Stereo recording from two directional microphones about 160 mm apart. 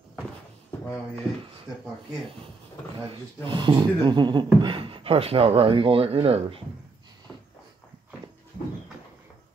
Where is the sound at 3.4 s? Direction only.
30° right (ahead or behind).